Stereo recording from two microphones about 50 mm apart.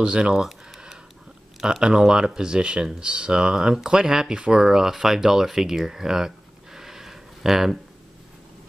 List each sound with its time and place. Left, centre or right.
0.0 s speech: centre
0.4 s a sound: centre
1.6 s speech: centre